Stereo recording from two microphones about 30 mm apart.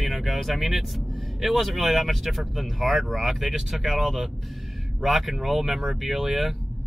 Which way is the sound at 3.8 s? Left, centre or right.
Centre.